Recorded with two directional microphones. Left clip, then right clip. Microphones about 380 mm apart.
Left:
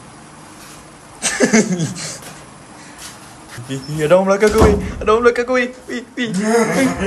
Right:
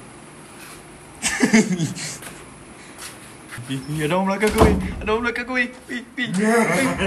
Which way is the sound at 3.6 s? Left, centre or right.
Centre.